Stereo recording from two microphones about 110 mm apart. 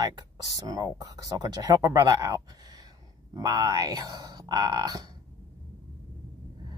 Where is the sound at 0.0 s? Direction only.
35° right (ahead or behind).